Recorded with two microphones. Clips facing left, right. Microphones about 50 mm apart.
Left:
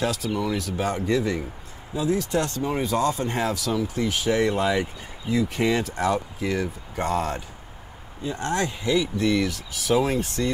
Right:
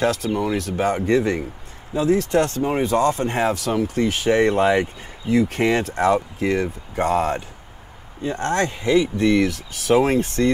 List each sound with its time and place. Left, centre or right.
0.0 s speech: right
8.2 s speech: right